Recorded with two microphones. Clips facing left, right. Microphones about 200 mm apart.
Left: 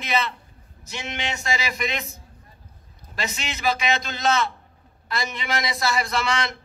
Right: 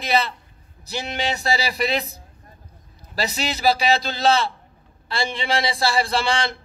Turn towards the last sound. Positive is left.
turn(degrees=-30)  # may be behind; listen again after turning